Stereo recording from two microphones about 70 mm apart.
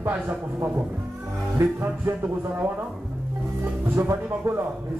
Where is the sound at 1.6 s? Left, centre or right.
Right.